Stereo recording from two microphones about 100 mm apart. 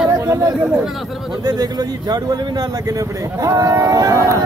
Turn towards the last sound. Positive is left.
turn(degrees=-30)  # may be behind; listen again after turning